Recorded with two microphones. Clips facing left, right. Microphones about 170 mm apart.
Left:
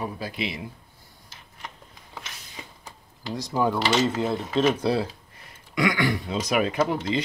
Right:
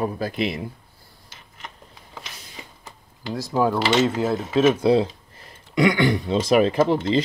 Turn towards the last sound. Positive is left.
turn(degrees=-30)  # may be behind; listen again after turning